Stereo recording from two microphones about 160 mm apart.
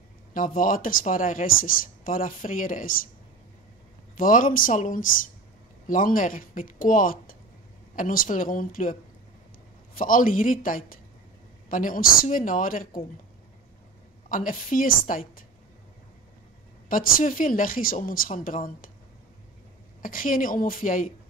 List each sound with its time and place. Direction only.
0.3 s speech: 55° left (ahead or behind)
4.2 s speech: 55° left (ahead or behind)
9.9 s speech: 60° left (ahead or behind)
14.3 s speech: 60° left (ahead or behind)
16.9 s speech: 60° left (ahead or behind)
20.0 s speech: 60° left (ahead or behind)